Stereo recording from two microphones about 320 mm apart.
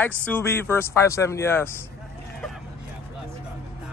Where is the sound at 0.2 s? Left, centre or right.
Centre.